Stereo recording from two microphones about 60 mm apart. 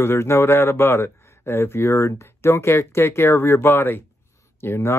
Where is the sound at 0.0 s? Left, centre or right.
Left.